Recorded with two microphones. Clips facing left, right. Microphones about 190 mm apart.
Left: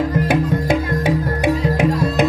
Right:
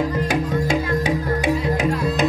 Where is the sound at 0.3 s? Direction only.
55° left (ahead or behind).